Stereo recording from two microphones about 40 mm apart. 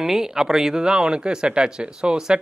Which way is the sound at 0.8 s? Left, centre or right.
Right.